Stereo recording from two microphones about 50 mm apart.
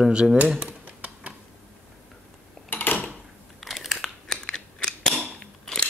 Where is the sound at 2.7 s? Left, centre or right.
Left.